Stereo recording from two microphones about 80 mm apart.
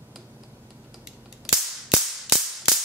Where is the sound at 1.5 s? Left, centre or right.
Centre.